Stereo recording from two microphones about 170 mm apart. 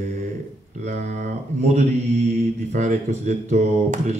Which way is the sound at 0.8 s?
45° right (ahead or behind).